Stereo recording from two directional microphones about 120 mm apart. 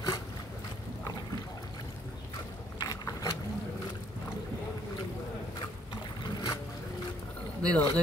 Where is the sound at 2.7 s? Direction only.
35° left (ahead or behind).